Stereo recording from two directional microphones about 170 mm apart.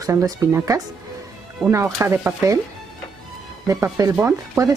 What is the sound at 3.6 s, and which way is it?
Speech, 20° right (ahead or behind).